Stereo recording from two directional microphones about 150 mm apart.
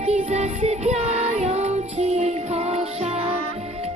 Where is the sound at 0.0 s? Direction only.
45° right (ahead or behind).